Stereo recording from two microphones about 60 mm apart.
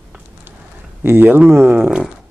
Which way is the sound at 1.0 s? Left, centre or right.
Right.